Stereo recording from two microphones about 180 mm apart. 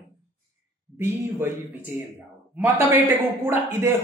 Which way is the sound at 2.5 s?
15° right (ahead or behind).